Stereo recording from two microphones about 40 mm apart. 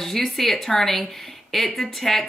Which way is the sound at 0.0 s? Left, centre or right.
Centre.